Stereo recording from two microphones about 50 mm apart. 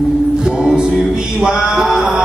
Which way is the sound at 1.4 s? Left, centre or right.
Centre.